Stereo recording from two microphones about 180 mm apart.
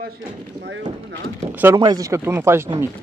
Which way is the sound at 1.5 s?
10° right (ahead or behind).